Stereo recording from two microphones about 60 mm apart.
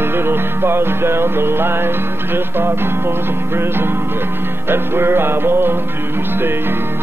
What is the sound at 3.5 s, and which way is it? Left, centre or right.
Music, right.